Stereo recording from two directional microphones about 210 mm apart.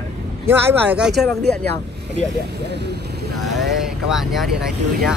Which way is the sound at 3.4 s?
Centre (ahead or behind).